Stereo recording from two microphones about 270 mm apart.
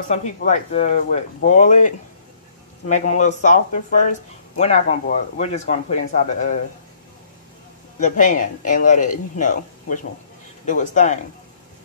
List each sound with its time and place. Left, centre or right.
0.1 s speech: left
8.0 s speech: left